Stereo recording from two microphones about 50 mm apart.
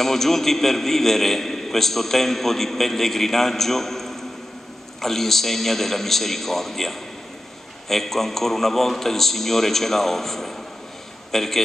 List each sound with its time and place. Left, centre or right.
0.0 s a man's voice: centre